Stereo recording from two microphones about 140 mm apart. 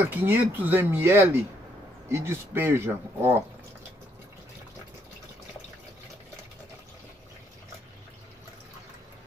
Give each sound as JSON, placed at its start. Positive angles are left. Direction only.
{"t": 0.1, "sound": "speech", "side_deg": -15}